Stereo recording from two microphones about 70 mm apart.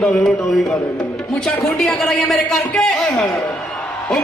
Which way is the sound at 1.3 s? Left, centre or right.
Centre.